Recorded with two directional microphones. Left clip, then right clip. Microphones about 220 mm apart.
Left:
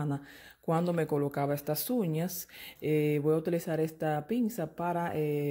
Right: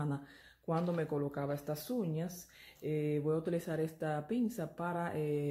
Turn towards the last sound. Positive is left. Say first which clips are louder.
# left 5 dB
turn(degrees=25)  # may be behind; listen again after turning